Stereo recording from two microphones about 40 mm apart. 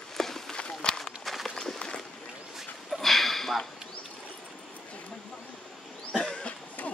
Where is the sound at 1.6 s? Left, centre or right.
Centre.